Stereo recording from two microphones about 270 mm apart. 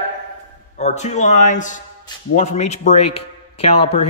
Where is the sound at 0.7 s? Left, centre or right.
Left.